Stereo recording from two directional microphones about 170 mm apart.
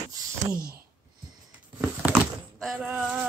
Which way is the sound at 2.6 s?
5° right (ahead or behind).